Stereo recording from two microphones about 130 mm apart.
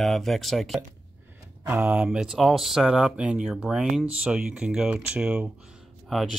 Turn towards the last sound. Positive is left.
turn(degrees=0)  # may be behind; listen again after turning